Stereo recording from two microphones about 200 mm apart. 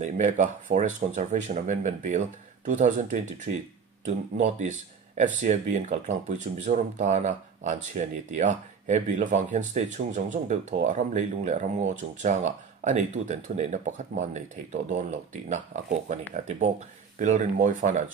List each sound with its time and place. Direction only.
0.0 s speech: 40° right (ahead or behind)